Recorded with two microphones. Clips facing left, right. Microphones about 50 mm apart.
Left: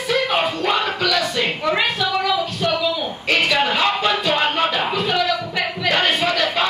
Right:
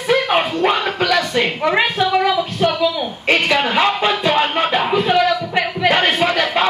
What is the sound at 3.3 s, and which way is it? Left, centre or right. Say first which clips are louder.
Music: right 2 dB; right.